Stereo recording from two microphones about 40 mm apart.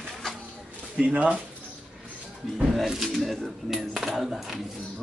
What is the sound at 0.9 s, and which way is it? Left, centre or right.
Speech, right.